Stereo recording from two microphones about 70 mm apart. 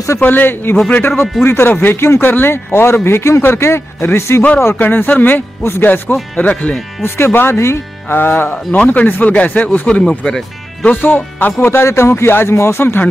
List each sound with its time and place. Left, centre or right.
0.2 s speech: left
7.0 s speech: left
9.8 s speech: centre
11.6 s speech: left